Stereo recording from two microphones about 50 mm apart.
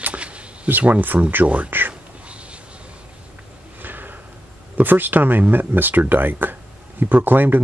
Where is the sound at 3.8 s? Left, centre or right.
Right.